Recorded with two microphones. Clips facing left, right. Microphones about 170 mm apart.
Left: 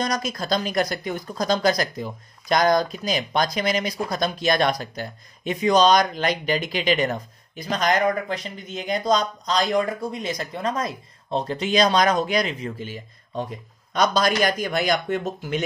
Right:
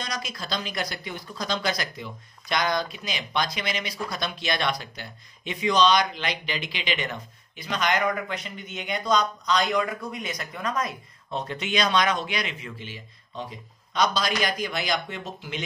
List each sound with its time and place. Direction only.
0.0 s speech: 45° left (ahead or behind)